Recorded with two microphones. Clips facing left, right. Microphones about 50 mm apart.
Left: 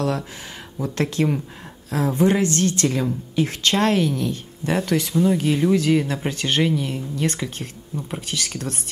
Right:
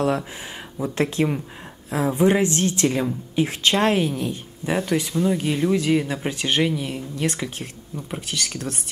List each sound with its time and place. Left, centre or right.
0.7 s a woman's voice: centre